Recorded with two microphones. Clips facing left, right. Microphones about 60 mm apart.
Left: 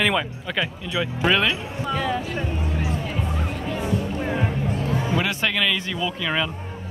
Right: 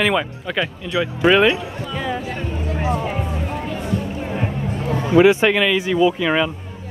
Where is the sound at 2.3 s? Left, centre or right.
Right.